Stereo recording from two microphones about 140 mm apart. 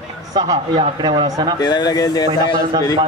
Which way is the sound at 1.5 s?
30° left (ahead or behind).